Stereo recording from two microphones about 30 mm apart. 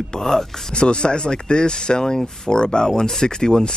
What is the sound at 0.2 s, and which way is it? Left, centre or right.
Speech, centre.